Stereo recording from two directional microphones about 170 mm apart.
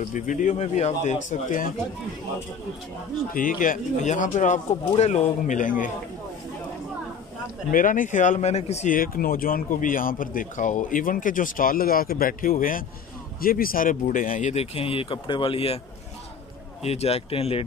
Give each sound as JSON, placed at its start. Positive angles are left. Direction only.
{"t": 0.0, "sound": "speech", "side_deg": 45}
{"t": 3.3, "sound": "speech", "side_deg": 55}
{"t": 7.7, "sound": "speech", "side_deg": 50}
{"t": 8.9, "sound": "a man's voice", "side_deg": 60}
{"t": 16.8, "sound": "speech", "side_deg": 40}